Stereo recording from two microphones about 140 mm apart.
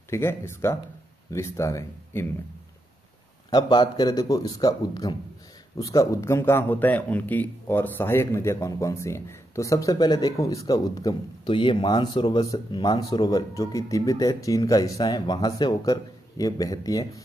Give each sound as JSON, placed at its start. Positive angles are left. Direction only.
{"t": 0.1, "sound": "a man's voice", "side_deg": 20}
{"t": 3.4, "sound": "a man's voice", "side_deg": 30}